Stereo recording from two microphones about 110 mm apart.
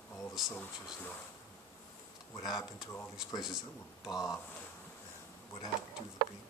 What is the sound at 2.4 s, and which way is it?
Speech, 35° left (ahead or behind).